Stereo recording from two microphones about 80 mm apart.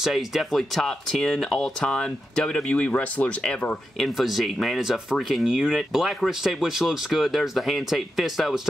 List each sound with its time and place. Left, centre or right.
0.0 s speech: centre
4.0 s speech: centre